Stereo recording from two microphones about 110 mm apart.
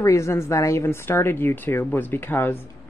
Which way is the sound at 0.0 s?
25° left (ahead or behind).